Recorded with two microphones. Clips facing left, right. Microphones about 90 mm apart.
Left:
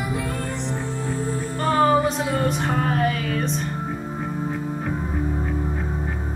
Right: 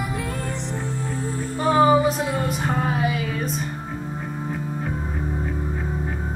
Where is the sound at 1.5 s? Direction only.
5° right (ahead or behind).